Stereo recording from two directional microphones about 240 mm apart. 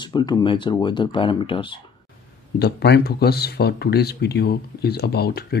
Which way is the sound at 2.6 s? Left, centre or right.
Left.